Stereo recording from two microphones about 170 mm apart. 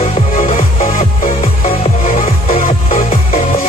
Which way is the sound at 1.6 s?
35° left (ahead or behind).